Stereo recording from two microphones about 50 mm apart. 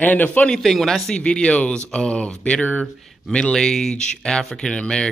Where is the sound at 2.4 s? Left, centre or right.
Left.